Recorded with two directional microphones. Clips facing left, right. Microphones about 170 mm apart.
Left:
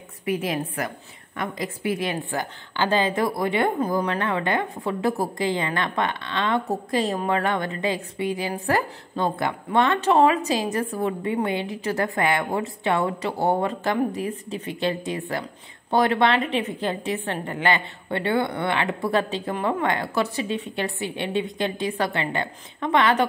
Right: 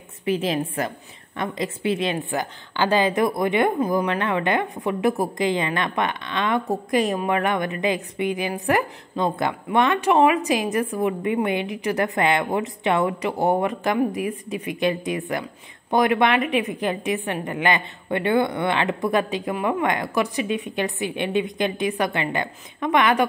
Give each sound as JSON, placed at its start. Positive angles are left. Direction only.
{"t": 0.2, "sound": "a woman's voice", "side_deg": -25}